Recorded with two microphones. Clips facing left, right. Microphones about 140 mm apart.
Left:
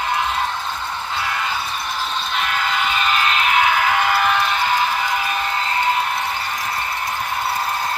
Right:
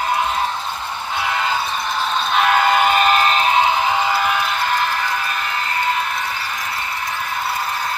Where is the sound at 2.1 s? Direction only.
55° right (ahead or behind); by 5.3 s 15° left (ahead or behind).